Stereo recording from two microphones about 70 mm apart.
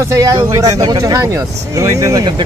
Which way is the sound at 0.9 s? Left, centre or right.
Right.